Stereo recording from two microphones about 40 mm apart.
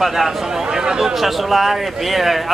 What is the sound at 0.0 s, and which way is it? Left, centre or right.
Speech, centre.